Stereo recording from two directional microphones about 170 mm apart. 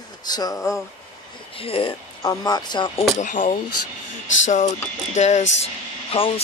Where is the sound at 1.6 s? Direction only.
30° left (ahead or behind).